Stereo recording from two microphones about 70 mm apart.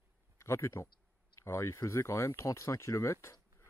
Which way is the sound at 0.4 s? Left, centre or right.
Left.